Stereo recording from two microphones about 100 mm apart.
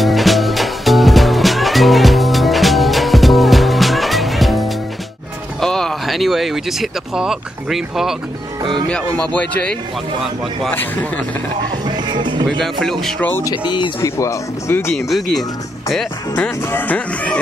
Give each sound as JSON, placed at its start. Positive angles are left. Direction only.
{"t": 0.0, "sound": "music", "side_deg": 0}
{"t": 5.6, "sound": "a sound", "side_deg": 5}
{"t": 8.8, "sound": "speech", "side_deg": 10}
{"t": 11.8, "sound": "music", "side_deg": -50}
{"t": 12.4, "sound": "speech", "side_deg": 5}
{"t": 13.7, "sound": "speech", "side_deg": 50}
{"t": 14.0, "sound": "speech", "side_deg": 30}
{"t": 15.0, "sound": "speech", "side_deg": 0}
{"t": 16.3, "sound": "speech", "side_deg": 15}